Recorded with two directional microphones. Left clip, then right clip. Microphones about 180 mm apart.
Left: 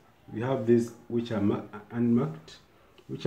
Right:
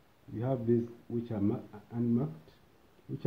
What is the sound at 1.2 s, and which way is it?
Speech, 40° right (ahead or behind).